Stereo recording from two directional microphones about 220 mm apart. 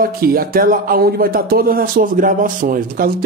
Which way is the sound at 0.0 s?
45° right (ahead or behind).